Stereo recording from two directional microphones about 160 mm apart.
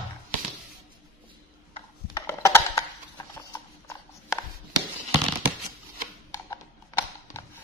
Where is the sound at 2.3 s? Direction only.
15° left (ahead or behind).